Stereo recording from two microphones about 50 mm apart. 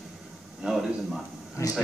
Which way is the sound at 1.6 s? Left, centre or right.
Left.